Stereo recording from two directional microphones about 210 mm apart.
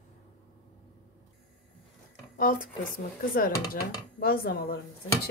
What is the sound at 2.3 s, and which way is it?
Speech, 40° left (ahead or behind).